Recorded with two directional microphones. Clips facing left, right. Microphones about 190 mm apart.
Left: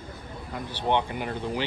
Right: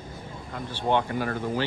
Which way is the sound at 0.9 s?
20° left (ahead or behind).